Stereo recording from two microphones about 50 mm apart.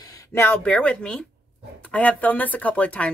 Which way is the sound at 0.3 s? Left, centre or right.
Left.